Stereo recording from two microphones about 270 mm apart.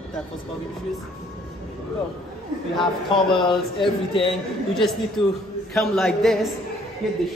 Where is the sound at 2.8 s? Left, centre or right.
Centre.